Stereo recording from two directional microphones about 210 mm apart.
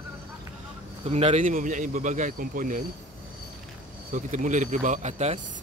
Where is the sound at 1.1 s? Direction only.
30° right (ahead or behind).